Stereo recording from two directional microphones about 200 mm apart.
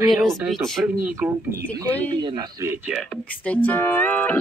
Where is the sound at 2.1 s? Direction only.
20° right (ahead or behind).